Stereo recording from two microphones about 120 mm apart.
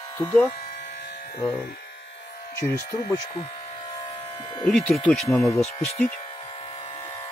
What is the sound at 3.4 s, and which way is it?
Electric shaver, 50° left (ahead or behind).